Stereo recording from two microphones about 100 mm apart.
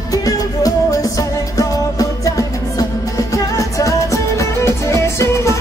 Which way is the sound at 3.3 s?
35° left (ahead or behind).